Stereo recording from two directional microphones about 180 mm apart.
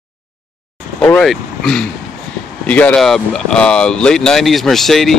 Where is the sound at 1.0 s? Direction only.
5° left (ahead or behind).